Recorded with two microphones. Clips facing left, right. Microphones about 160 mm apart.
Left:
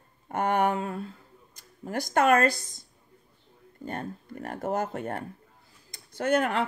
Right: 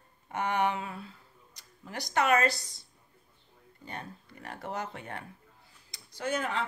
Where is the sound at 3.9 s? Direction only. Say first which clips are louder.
Left 8 dB; 50° left (ahead or behind).